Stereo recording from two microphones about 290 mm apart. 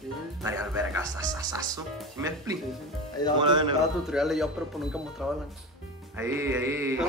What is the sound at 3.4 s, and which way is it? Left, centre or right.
Speech, centre.